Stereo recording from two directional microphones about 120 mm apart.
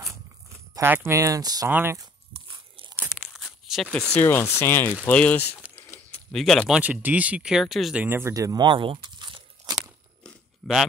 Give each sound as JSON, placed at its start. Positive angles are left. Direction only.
{"t": 0.0, "sound": "a sound", "side_deg": -25}
{"t": 1.7, "sound": "speech", "side_deg": -15}
{"t": 2.3, "sound": "crunch", "side_deg": -45}
{"t": 3.3, "sound": "tearing", "side_deg": 0}
{"t": 4.1, "sound": "speech", "side_deg": 15}
{"t": 6.3, "sound": "speech", "side_deg": 5}
{"t": 6.8, "sound": "speech", "side_deg": -15}
{"t": 8.0, "sound": "speech", "side_deg": -20}
{"t": 8.6, "sound": "a sound", "side_deg": -45}
{"t": 10.2, "sound": "biting", "side_deg": 0}